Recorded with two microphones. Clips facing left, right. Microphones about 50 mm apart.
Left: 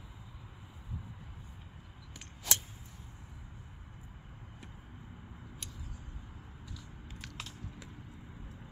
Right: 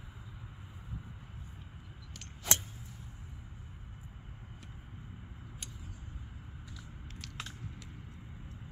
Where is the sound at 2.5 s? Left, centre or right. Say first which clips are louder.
Right 2 dB; centre.